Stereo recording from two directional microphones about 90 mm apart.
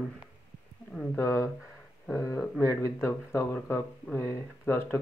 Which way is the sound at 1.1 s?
30° left (ahead or behind).